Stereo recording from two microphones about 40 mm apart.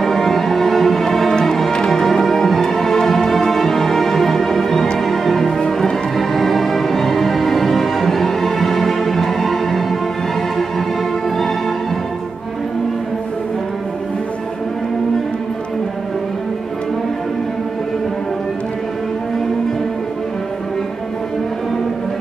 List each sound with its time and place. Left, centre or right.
0.0 s music: centre